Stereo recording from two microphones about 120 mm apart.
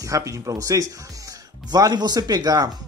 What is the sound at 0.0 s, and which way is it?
A man's voice, 25° right (ahead or behind).